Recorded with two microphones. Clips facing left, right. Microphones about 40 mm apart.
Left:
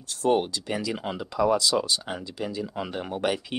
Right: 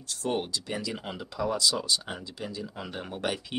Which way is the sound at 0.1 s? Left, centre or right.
Centre.